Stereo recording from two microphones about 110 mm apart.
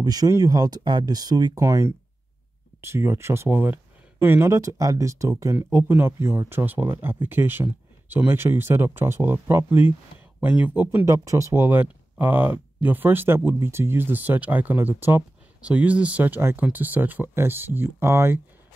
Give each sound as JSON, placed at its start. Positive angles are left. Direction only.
{"t": 0.0, "sound": "speech", "side_deg": -35}
{"t": 11.1, "sound": "speech", "side_deg": -30}